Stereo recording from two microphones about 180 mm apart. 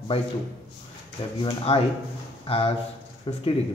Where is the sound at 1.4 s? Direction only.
30° left (ahead or behind).